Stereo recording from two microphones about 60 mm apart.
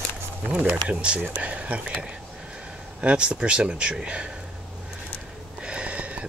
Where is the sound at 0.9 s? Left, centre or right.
Centre.